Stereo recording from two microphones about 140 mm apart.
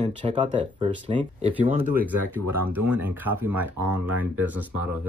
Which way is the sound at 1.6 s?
80° right.